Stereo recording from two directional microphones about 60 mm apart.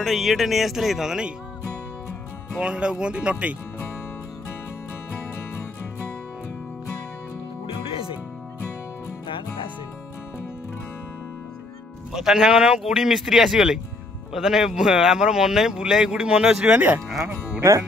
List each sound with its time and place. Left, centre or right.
0.0 s speech: centre
2.6 s speech: centre
12.1 s speech: centre
16.7 s speech: right
17.6 s speech: right